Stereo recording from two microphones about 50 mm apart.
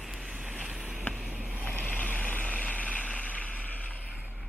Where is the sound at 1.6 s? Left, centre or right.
Left.